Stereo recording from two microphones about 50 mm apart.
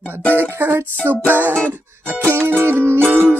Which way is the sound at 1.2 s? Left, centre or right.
Right.